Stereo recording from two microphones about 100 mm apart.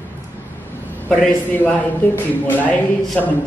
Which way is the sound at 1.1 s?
15° left (ahead or behind).